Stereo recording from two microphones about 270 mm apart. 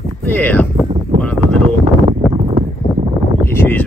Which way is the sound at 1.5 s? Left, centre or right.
Right.